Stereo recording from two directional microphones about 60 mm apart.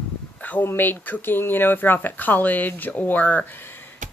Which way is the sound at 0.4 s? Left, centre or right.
Left.